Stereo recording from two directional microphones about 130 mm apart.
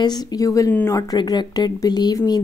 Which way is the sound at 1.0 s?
30° left (ahead or behind).